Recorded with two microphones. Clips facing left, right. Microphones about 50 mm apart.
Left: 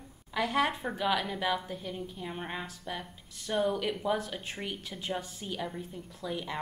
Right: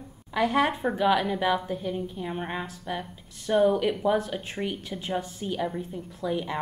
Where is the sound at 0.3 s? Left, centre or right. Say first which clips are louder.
Right 5 dB; centre.